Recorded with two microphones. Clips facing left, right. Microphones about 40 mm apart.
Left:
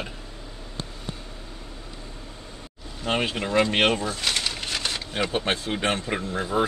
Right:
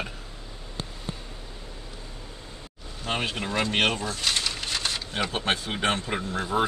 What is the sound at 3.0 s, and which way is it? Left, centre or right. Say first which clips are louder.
Speech: left 3 dB; centre.